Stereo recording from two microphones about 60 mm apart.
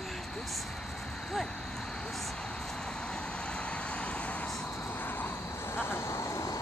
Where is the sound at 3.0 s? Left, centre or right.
Centre; by 6.6 s left.